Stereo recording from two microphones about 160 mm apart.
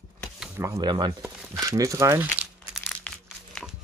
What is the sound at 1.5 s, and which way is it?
Crumpling, 20° right (ahead or behind).